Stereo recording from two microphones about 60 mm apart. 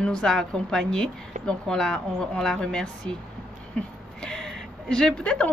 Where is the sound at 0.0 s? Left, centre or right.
Centre.